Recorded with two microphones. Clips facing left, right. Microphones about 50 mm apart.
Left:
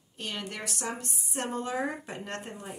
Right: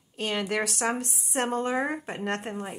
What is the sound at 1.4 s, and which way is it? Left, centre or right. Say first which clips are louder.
Speech: right 6 dB; right.